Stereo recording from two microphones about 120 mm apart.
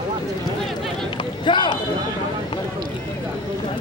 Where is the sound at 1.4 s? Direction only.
40° left (ahead or behind).